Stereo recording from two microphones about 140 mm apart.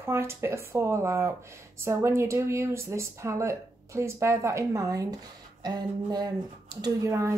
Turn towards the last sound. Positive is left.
turn(degrees=-20)  # may be behind; listen again after turning